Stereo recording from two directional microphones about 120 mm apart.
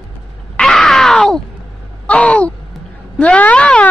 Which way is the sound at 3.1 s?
10° left (ahead or behind).